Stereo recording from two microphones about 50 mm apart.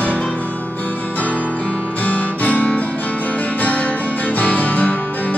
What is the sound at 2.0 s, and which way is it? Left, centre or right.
Music, left.